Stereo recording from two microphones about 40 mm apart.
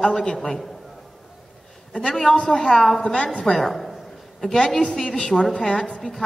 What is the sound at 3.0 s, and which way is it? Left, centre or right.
Speech, centre.